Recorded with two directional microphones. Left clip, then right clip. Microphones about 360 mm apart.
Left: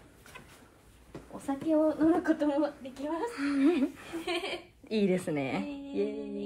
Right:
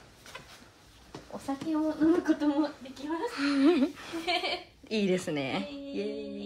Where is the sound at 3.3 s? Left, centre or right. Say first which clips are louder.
Right 4 dB; centre.